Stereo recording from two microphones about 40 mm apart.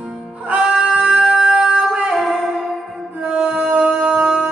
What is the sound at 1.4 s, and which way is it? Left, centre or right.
Music, centre.